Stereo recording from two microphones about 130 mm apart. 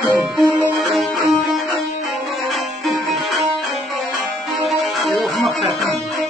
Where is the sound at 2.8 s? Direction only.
Centre (ahead or behind).